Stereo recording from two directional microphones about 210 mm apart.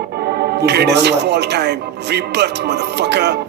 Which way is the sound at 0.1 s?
50° right (ahead or behind).